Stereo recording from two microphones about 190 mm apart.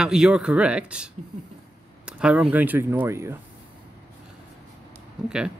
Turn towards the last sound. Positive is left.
turn(degrees=-5)  # may be behind; listen again after turning